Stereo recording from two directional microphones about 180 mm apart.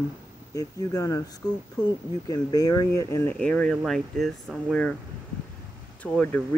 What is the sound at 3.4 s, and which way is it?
Speech, 5° left (ahead or behind).